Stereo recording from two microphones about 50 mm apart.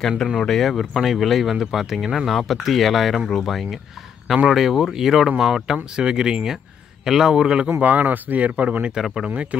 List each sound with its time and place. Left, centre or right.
0.4 s speech: centre
7.8 s speech: right
8.9 s speech: centre
9.3 s speech: right